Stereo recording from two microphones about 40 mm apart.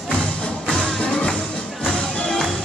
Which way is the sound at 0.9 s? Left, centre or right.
Left.